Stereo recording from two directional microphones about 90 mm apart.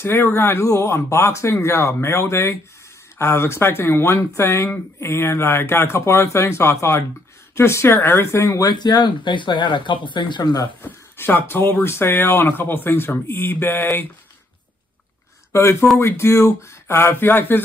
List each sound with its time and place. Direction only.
0.0 s speech: 25° left (ahead or behind); by 10.7 s 50° left (ahead or behind)
10.8 s speech: 25° left (ahead or behind)
15.5 s speech: 30° left (ahead or behind)